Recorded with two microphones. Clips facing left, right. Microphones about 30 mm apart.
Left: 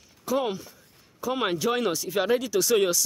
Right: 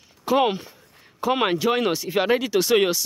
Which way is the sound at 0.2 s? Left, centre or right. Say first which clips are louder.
Right 6 dB; right.